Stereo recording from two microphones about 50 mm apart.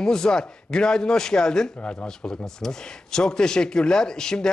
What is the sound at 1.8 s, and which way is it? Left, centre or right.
Speech, left.